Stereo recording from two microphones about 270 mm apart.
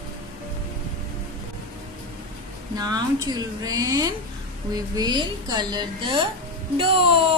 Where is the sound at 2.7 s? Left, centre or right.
Centre.